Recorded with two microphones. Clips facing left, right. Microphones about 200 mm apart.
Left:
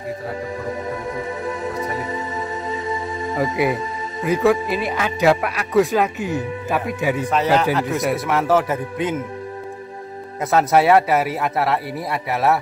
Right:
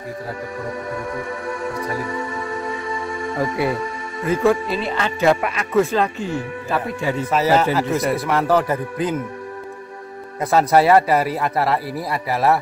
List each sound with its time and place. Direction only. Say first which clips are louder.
1.1 s music: left 1 dB; 20° left (ahead or behind)
4.5 s speech: even; 15° left (ahead or behind)
5.7 s speech: left 1 dB; 15° left (ahead or behind)
7.2 s speech: right 2 dB; 5° right (ahead or behind)
10.4 s speech: right 1 dB; centre (ahead or behind)